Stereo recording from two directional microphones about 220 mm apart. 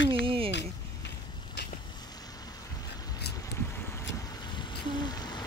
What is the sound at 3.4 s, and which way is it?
Boat, 10° left (ahead or behind).